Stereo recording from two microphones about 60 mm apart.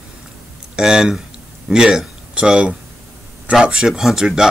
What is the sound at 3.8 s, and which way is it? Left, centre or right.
Speech, centre.